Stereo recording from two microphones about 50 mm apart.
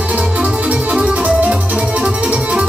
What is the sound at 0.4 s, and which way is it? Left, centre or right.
Music, right.